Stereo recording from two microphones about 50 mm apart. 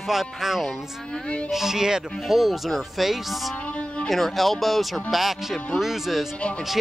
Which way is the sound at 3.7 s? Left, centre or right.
Left.